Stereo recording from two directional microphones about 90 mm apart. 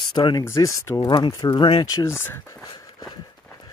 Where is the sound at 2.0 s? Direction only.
25° left (ahead or behind).